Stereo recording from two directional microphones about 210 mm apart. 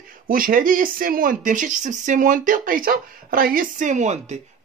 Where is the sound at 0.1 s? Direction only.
40° right (ahead or behind).